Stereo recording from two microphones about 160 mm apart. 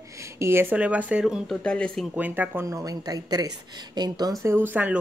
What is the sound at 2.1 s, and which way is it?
Speech, 10° right (ahead or behind).